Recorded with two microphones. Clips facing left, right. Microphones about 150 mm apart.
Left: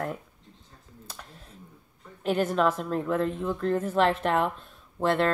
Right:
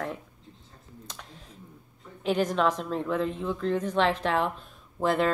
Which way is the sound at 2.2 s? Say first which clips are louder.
Left 1 dB; 5° left (ahead or behind).